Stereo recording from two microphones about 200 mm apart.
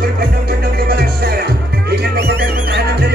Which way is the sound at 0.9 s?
50° right (ahead or behind).